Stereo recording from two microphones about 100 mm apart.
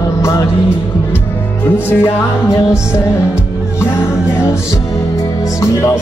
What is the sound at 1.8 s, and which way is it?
Music, 25° left (ahead or behind).